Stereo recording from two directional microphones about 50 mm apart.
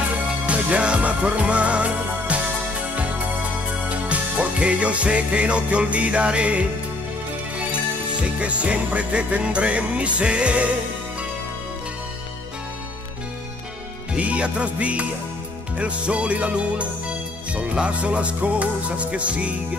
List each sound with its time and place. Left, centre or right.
0.5 s music: right
3.9 s music: right
8.2 s music: right
14.1 s music: right